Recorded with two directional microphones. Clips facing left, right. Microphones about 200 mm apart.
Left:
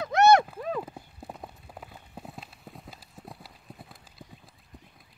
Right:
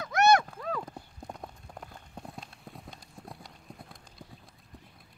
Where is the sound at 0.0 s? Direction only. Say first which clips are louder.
Left 4 dB; 25° left (ahead or behind).